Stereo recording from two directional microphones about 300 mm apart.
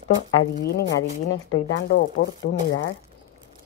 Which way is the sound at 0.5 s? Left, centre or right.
Left.